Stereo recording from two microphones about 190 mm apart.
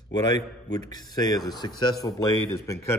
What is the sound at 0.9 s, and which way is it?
Speech, 20° left (ahead or behind).